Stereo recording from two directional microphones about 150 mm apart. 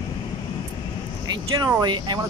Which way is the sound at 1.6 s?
30° right (ahead or behind).